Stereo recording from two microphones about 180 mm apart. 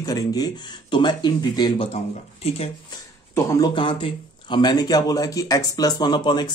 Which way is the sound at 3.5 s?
20° left (ahead or behind).